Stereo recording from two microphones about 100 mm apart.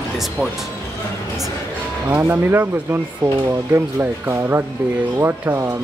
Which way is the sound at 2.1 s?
20° right (ahead or behind).